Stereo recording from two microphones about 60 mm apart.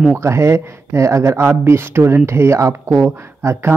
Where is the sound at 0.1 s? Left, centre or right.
Right.